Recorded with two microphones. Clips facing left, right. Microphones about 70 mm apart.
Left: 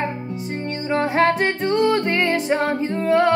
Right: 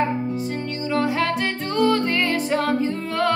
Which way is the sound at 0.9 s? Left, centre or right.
Left.